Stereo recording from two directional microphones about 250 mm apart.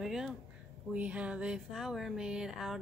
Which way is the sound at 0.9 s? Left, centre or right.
Centre.